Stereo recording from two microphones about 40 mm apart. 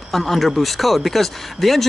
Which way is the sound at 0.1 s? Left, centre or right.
Centre.